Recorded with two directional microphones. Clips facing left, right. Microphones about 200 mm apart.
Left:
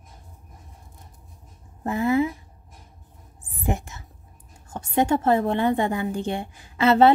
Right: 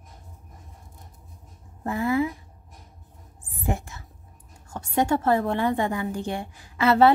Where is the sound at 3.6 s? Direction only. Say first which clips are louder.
Left 2 dB; 20° left (ahead or behind).